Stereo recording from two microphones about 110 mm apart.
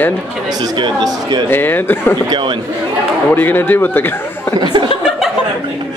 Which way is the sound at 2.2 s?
45° right (ahead or behind).